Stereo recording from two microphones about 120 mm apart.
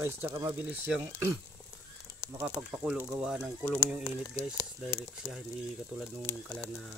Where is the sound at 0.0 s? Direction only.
20° right (ahead or behind).